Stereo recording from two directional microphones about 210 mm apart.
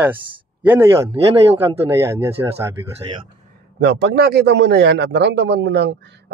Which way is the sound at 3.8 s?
55° right (ahead or behind).